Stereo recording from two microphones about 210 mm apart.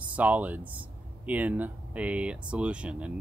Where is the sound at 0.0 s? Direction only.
5° right (ahead or behind).